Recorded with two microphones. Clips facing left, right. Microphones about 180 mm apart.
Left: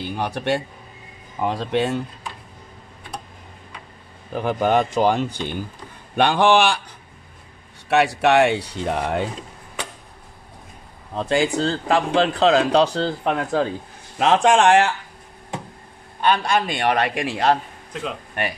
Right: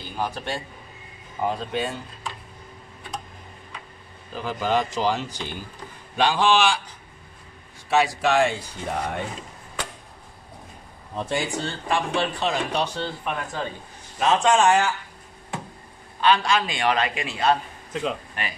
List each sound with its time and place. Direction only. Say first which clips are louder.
0.0 s speech: left 4 dB; 70° left (ahead or behind)
1.4 s speech: left 4 dB; 80° left
4.3 s a man's voice: left 5 dB; 60° left (ahead or behind)
7.9 s speech: left 4 dB; 65° left (ahead or behind); by 9.2 s 80° left
11.1 s speech: left 7 dB; 90° left
16.2 s a man's voice: left 1 dB; 50° left (ahead or behind); by 17.5 s 75° left (ahead or behind)